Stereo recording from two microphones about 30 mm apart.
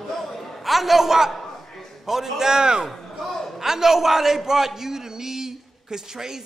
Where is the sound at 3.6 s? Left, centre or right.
Centre.